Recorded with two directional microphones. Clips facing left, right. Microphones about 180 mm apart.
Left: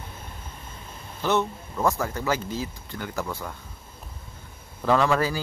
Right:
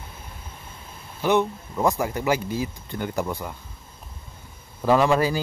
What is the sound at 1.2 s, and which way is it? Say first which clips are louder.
Speech: right 3 dB; 15° right (ahead or behind).